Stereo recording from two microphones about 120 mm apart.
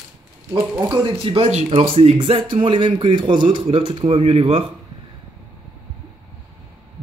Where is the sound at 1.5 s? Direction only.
65° right (ahead or behind).